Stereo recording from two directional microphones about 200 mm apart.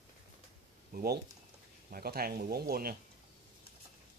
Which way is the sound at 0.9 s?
50° right (ahead or behind).